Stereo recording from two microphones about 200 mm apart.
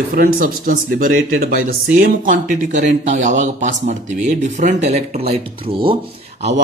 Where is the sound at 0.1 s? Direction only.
45° right (ahead or behind).